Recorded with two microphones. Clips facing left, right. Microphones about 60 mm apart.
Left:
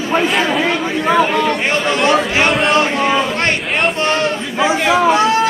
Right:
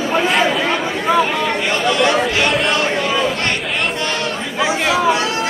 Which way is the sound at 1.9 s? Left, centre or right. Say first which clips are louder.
Left 1 dB; left.